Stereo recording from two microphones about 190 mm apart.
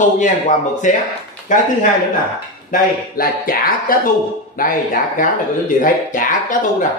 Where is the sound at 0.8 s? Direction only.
40° left (ahead or behind).